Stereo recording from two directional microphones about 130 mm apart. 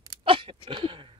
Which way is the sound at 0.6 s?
40° right (ahead or behind).